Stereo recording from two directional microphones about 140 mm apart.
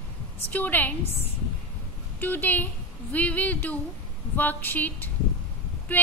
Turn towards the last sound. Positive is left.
turn(degrees=15)  # may be behind; listen again after turning